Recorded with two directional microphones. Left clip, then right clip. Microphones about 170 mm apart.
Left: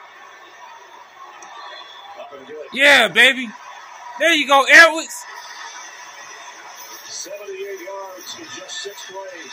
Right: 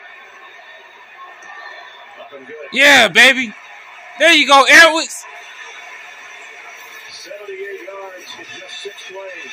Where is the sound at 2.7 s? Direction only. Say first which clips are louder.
Right 3 dB; 15° right (ahead or behind).